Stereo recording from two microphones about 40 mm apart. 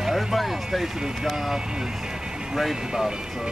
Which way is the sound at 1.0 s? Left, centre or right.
Centre.